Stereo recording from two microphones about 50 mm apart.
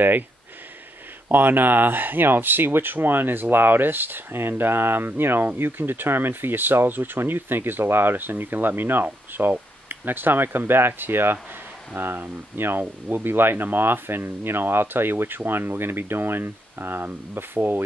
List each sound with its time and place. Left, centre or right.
1.3 s speech: right